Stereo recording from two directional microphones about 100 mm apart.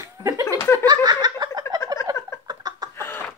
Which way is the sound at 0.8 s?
45° right (ahead or behind).